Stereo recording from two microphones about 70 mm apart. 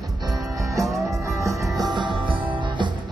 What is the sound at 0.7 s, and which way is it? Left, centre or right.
Music, centre.